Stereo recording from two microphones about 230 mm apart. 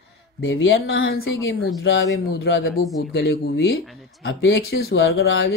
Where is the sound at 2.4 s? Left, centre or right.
Left.